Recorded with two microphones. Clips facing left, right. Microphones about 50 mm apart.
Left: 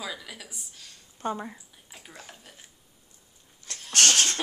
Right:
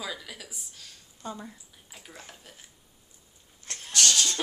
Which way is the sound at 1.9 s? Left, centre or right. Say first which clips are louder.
Left 1 dB; centre.